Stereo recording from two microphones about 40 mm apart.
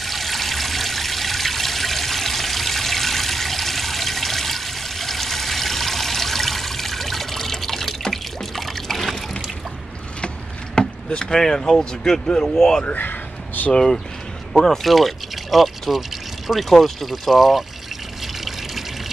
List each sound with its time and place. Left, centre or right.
0.0 s water: centre
10.2 s a sound: left
12.5 s speech: centre
12.8 s speech: left
13.7 s speech: centre
14.6 s speech: centre
18.2 s a sound: centre